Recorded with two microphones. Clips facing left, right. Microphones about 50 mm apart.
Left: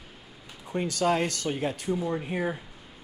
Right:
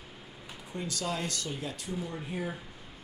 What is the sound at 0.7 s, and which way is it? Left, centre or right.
Speech, left.